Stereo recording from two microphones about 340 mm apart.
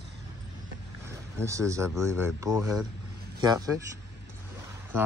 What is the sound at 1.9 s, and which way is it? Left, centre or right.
Speech, centre.